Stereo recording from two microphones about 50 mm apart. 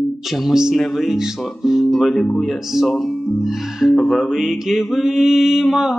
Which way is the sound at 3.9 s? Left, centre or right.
Centre.